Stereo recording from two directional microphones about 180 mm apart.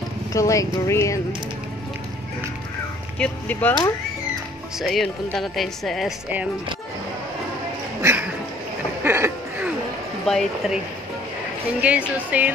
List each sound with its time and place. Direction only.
0.3 s speech: 20° left (ahead or behind)
3.2 s speech: 10° left (ahead or behind)
8.0 s speech: 10° right (ahead or behind)
9.0 s a sound: 15° right (ahead or behind)
10.2 s speech: 5° left (ahead or behind)
11.8 s speech: 5° right (ahead or behind)